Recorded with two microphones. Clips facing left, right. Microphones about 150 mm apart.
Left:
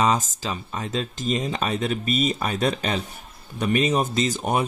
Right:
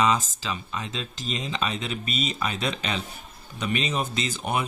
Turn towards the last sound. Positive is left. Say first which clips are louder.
# left 5 dB
turn(degrees=40)  # may be behind; listen again after turning